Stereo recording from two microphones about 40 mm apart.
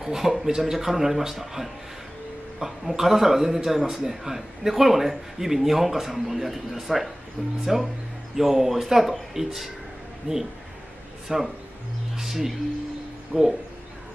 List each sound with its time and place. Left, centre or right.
0.0 s a man's voice: centre
10.3 s speech: right
11.2 s a man's voice: centre